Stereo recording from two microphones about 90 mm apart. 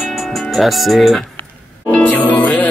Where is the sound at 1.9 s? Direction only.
15° left (ahead or behind).